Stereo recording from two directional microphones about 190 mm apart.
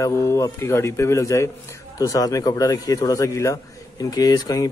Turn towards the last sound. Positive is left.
turn(degrees=20)  # may be behind; listen again after turning